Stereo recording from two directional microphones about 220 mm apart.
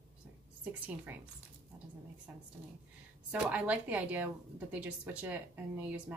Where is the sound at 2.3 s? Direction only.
5° right (ahead or behind).